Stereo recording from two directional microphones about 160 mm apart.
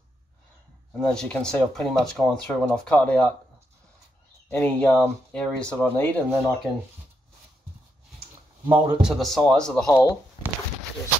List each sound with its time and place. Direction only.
1.0 s speech: 5° left (ahead or behind)
4.5 s speech: 10° left (ahead or behind)
8.6 s speech: centre (ahead or behind)
9.8 s speech: 25° left (ahead or behind)